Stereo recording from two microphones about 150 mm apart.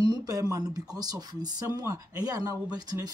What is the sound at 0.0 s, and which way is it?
Speech, 25° right (ahead or behind).